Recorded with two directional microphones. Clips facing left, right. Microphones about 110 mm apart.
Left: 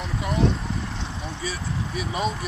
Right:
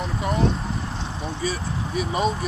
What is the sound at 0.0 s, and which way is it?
Vehicle, 40° right (ahead or behind).